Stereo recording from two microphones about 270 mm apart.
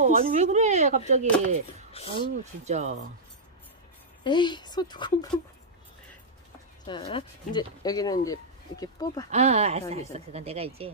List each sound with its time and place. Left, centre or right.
0.0 s speech: right
1.9 s speech: left
2.1 s speech: right
4.2 s speech: centre
6.9 s speech: centre
9.3 s speech: right